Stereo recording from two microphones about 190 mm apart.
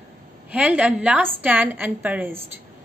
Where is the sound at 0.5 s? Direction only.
5° right (ahead or behind).